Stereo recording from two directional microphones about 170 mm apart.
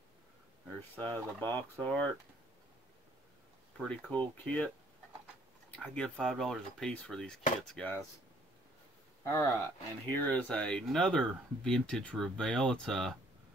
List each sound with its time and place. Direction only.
0.9 s speech: 10° left (ahead or behind)
3.7 s speech: 5° left (ahead or behind)
9.2 s speech: 15° left (ahead or behind)